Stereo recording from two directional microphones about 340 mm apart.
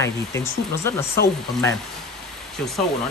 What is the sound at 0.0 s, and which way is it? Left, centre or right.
Speech, centre.